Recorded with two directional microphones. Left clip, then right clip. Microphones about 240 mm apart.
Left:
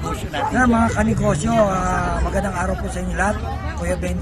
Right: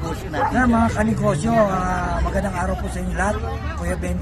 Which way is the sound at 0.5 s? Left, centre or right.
Centre.